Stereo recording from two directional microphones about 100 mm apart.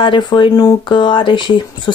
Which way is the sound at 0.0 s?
55° left (ahead or behind).